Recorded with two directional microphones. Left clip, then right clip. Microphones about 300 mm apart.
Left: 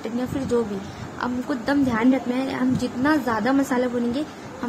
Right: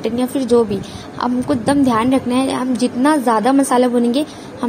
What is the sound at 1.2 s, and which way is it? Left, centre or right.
A woman's voice, centre.